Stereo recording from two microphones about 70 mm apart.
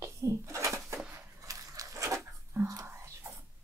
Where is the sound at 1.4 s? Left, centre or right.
Right.